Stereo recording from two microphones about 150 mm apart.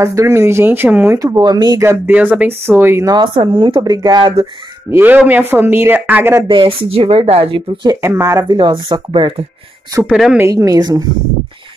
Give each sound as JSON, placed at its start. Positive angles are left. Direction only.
{"t": 0.0, "sound": "speech", "side_deg": -20}
{"t": 1.9, "sound": "speech", "side_deg": -10}
{"t": 3.2, "sound": "speech", "side_deg": -35}
{"t": 4.9, "sound": "speech", "side_deg": -10}
{"t": 6.4, "sound": "speech", "side_deg": -35}
{"t": 8.5, "sound": "speech", "side_deg": -30}
{"t": 10.0, "sound": "speech", "side_deg": -5}
{"t": 10.4, "sound": "speech", "side_deg": -25}